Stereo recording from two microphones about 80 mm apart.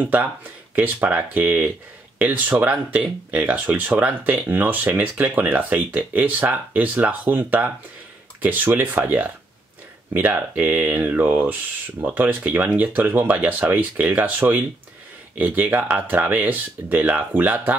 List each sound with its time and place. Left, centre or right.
0.0 s speech: right